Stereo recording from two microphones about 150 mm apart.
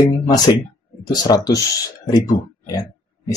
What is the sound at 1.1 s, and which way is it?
Speech, 25° left (ahead or behind).